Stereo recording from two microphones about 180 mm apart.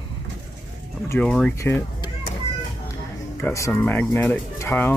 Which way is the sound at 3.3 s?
15° left (ahead or behind).